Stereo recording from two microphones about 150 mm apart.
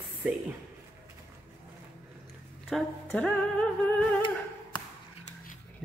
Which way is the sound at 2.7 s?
Centre (ahead or behind).